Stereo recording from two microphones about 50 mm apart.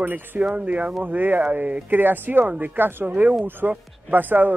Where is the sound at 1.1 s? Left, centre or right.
Right.